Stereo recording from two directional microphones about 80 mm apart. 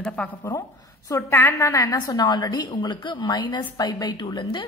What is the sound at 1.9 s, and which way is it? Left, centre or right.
A woman's voice, left.